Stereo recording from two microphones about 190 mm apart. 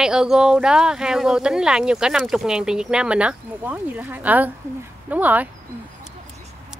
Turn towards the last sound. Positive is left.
turn(degrees=-10)  # may be behind; listen again after turning